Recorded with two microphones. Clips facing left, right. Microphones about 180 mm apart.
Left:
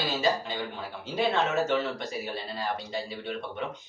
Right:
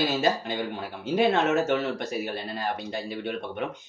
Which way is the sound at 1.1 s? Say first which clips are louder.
Right 5 dB; 50° right (ahead or behind).